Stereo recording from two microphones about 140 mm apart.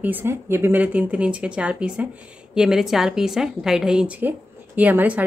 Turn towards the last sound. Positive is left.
turn(degrees=-10)  # may be behind; listen again after turning